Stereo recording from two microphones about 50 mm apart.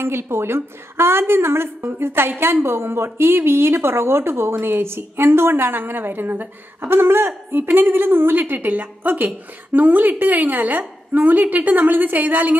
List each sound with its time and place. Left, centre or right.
0.0 s a woman's voice: right